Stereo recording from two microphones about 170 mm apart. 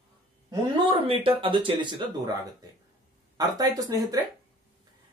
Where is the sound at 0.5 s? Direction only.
30° right (ahead or behind).